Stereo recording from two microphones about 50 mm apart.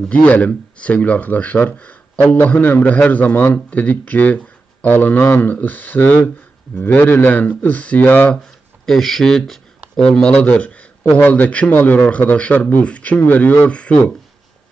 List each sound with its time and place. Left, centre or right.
0.1 s speech: left
8.8 s speech: centre
10.3 s speech: left